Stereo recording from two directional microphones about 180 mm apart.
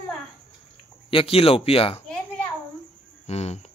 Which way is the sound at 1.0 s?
30° left (ahead or behind).